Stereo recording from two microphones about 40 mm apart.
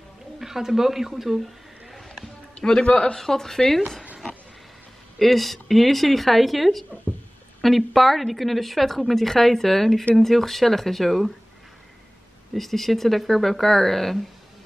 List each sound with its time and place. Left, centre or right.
0.4 s speech: centre
2.5 s a man's voice: left
3.2 s speech: centre
5.2 s a woman's voice: centre
12.5 s a woman's voice: centre